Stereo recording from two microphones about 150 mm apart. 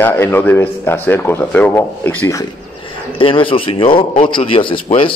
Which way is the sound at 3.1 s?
35° left (ahead or behind).